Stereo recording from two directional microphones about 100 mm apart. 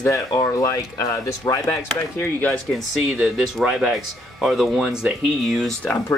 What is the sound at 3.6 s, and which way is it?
Speech, 5° right (ahead or behind).